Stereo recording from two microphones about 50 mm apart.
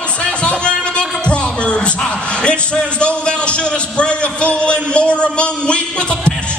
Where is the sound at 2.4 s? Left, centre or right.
Left.